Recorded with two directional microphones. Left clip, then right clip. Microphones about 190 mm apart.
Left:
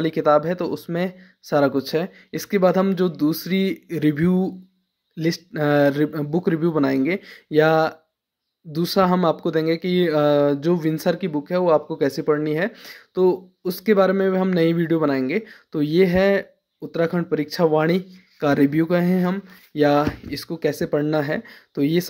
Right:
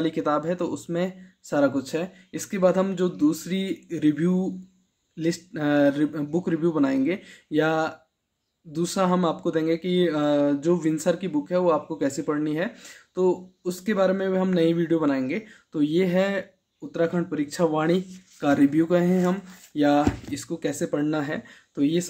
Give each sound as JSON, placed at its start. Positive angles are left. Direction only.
{"t": 0.0, "sound": "speech", "side_deg": 40}